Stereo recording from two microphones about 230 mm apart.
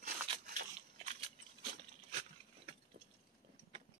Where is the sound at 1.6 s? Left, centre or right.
Right.